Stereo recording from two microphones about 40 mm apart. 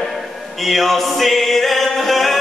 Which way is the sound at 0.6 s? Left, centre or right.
Centre.